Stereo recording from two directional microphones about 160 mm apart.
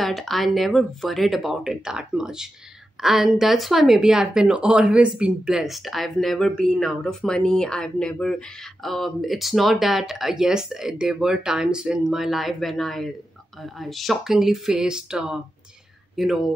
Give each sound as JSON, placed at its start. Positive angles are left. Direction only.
{"t": 0.0, "sound": "speech", "side_deg": 0}